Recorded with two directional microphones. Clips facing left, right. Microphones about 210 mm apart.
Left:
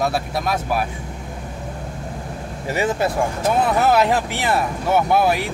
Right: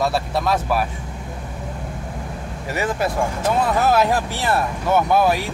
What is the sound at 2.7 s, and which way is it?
Speech, 25° left (ahead or behind).